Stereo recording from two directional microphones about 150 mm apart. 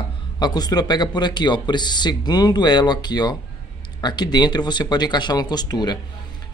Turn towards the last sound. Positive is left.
turn(degrees=25)  # may be behind; listen again after turning